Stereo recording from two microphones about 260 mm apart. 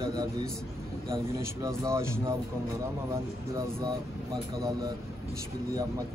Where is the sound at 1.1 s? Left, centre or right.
Centre.